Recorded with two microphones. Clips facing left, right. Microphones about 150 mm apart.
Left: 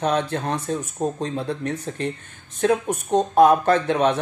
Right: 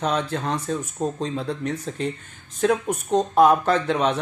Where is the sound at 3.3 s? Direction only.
50° left (ahead or behind).